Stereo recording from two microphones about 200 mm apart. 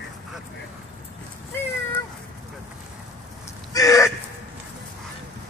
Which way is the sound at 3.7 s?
15° left (ahead or behind).